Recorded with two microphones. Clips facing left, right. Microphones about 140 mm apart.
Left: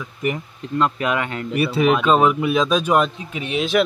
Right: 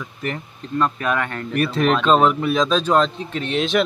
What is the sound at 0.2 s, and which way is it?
Speech, 15° left (ahead or behind).